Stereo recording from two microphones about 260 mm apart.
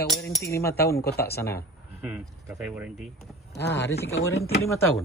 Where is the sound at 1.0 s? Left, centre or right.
Left.